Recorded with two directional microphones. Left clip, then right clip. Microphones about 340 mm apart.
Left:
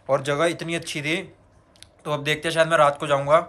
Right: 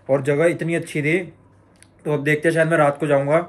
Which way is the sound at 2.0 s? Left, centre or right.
Centre.